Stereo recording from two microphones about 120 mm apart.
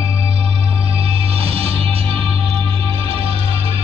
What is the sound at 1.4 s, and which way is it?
Music, 55° right (ahead or behind).